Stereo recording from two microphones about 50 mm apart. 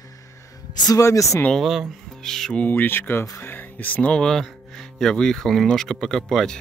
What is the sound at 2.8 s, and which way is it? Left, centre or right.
Speech, left.